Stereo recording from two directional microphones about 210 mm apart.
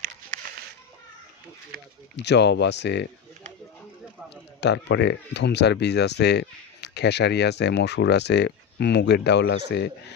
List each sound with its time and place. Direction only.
2.1 s speech: 55° left (ahead or behind)
4.6 s speech: 55° left (ahead or behind)